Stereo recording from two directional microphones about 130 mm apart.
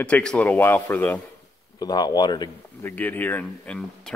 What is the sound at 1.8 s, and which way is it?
Speech, 30° left (ahead or behind).